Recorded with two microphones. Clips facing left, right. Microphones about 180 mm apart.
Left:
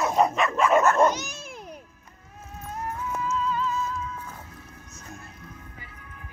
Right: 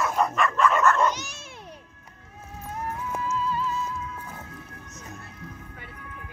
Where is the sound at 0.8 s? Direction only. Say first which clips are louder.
Left 5 dB; 45° left (ahead or behind).